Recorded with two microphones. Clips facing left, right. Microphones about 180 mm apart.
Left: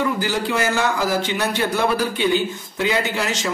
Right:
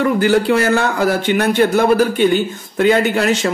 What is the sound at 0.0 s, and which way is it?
A man's voice, 60° right (ahead or behind).